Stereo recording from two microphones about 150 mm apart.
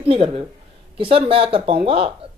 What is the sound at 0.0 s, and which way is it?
Speech, 40° right (ahead or behind).